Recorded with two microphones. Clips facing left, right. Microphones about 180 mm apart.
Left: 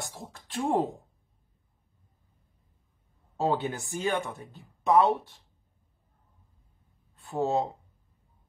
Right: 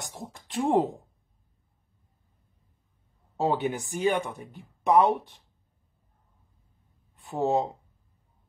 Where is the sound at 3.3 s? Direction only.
15° right (ahead or behind).